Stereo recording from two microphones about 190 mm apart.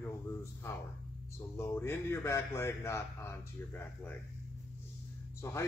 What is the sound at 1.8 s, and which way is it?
A man's voice, 10° left (ahead or behind).